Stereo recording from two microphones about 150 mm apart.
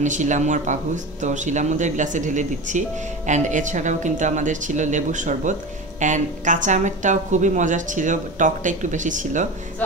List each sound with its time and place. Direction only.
0.0 s speech: 55° right (ahead or behind)